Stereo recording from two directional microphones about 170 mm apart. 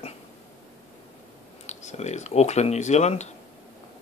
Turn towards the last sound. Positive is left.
turn(degrees=40)  # may be behind; listen again after turning